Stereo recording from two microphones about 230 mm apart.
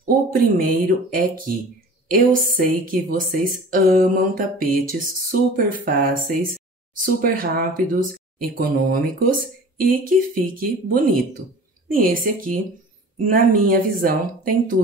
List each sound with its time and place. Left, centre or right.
0.0 s speech: right
13.7 s speech: right